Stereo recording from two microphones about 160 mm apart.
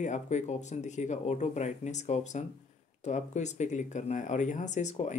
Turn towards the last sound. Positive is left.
turn(degrees=45)  # may be behind; listen again after turning